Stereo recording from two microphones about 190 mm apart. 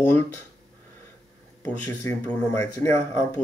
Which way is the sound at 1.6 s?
15° left (ahead or behind).